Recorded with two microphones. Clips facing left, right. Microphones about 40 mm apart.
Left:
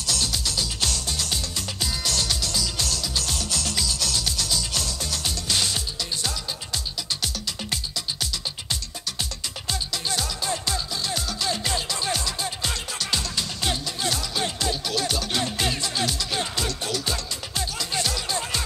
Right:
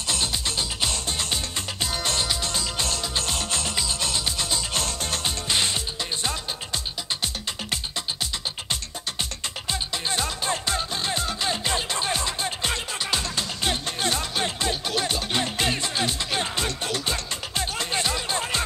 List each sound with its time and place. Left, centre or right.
0.0 s music: right
5.5 s music: right
9.7 s music: right